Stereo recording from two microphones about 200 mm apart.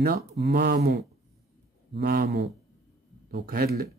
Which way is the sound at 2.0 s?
50° right (ahead or behind).